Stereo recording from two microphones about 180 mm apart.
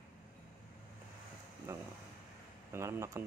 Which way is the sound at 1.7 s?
15° right (ahead or behind).